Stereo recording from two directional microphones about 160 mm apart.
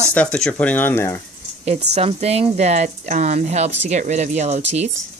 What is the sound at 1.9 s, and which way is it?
Speech, 40° right (ahead or behind).